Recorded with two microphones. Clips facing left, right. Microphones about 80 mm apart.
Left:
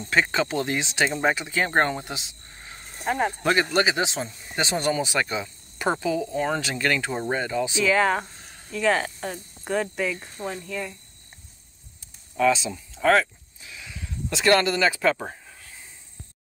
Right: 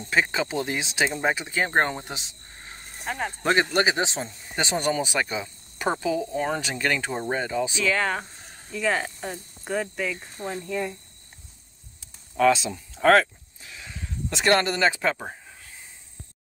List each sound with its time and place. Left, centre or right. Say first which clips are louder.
0.1 s speech: left 1 dB; centre
3.1 s speech: left 6 dB; centre
3.7 s speech: even; right
7.1 s speech: left 1 dB; centre
7.3 s speech: even; right
7.8 s speech: left 6 dB; centre
8.7 s speech: left 3 dB; centre
10.3 s speech: even; centre
10.6 s speech: right 3 dB; right
12.4 s speech: right 1 dB; right
12.9 s a sound: right 2 dB; right
13.7 s a sound: even; right
15.1 s speech: left 2 dB; centre